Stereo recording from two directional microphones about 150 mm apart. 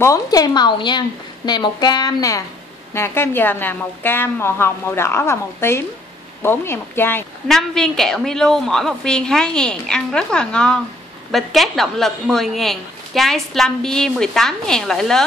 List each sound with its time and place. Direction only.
0.0 s a woman's voice: 25° left (ahead or behind)
7.4 s a woman's voice: 5° left (ahead or behind)